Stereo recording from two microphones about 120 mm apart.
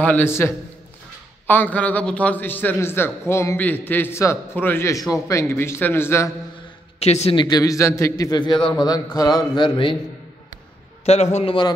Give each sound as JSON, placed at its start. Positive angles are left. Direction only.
{"t": 0.0, "sound": "a man's voice", "side_deg": 15}
{"t": 1.5, "sound": "a man's voice", "side_deg": 15}
{"t": 7.0, "sound": "speech", "side_deg": 60}
{"t": 7.3, "sound": "a man's voice", "side_deg": 35}
{"t": 11.1, "sound": "speech", "side_deg": 60}